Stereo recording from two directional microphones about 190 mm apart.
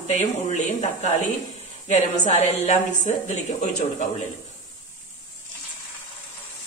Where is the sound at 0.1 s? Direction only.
35° left (ahead or behind).